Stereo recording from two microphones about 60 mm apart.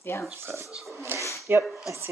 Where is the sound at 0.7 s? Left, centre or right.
Centre.